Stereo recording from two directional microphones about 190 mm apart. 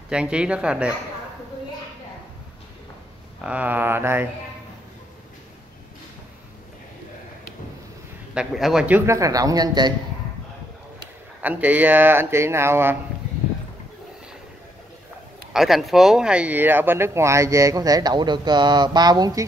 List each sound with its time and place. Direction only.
0.1 s speech: 5° right (ahead or behind)
3.3 s speech: 5° right (ahead or behind)
8.4 s speech: centre (ahead or behind); by 9.9 s 20° right (ahead or behind)
11.4 s speech: 10° right (ahead or behind)
15.5 s speech: centre (ahead or behind); by 19.4 s 20° right (ahead or behind)